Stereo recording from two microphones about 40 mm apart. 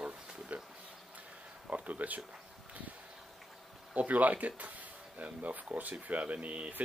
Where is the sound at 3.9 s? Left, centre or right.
Right.